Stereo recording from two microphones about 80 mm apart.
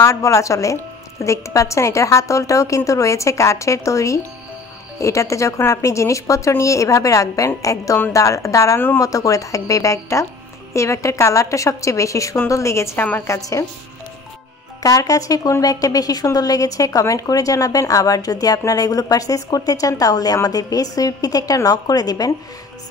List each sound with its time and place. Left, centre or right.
0.0 s a woman's voice: left
8.7 s speech: left
9.0 s a woman's voice: left
14.8 s a woman's voice: left